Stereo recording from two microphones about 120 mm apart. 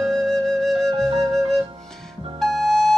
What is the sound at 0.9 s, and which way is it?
Music, 55° right (ahead or behind).